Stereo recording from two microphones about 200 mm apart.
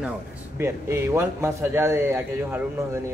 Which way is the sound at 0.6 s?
15° right (ahead or behind).